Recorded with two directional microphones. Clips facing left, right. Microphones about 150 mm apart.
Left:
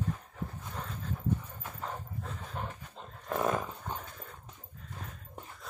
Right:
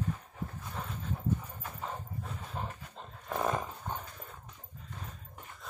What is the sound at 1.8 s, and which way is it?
Dog, 10° right (ahead or behind).